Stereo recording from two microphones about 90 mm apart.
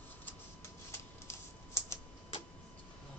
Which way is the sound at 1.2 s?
30° left (ahead or behind).